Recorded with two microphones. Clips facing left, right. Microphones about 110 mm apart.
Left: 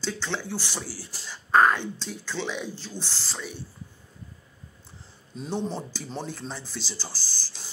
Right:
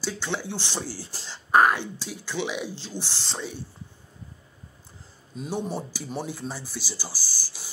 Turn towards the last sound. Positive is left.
turn(degrees=-10)  # may be behind; listen again after turning